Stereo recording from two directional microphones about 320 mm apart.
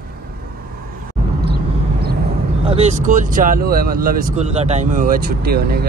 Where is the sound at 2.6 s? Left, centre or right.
Centre.